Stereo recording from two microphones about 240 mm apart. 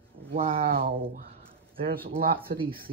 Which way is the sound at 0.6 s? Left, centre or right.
Right.